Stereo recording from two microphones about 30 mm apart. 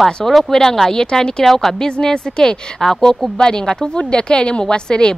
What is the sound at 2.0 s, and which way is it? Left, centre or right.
Speech, centre.